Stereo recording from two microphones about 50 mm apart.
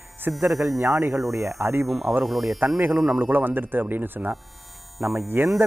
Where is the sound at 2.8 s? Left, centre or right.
Right.